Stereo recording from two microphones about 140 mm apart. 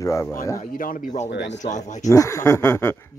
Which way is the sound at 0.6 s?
75° left (ahead or behind).